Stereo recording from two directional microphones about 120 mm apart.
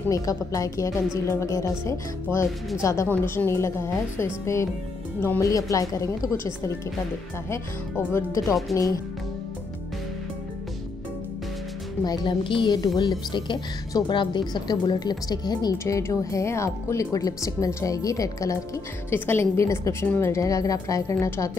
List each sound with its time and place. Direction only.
0.1 s a woman's voice: 30° left (ahead or behind)
8.7 s speech: centre (ahead or behind)
12.0 s a woman's voice: 40° left (ahead or behind)